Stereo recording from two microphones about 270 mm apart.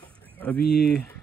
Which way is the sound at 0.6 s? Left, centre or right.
Left.